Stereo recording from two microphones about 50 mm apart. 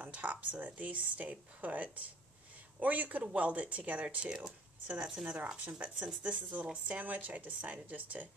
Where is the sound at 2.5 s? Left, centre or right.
Right.